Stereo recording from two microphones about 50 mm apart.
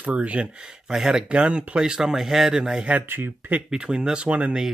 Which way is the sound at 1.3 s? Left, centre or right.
Right.